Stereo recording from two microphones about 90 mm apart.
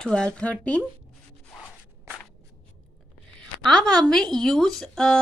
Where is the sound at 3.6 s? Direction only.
10° left (ahead or behind).